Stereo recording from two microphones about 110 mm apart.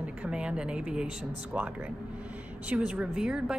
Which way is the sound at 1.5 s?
10° right (ahead or behind).